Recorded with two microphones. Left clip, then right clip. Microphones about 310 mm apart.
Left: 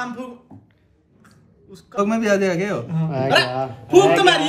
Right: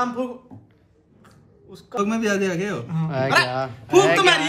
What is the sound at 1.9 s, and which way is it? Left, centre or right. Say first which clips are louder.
Speech: left 4 dB; centre.